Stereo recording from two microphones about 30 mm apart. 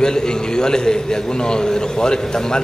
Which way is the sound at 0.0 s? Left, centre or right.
Left.